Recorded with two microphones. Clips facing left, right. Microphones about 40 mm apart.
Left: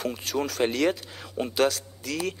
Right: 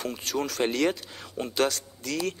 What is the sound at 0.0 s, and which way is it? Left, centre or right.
Speech, centre.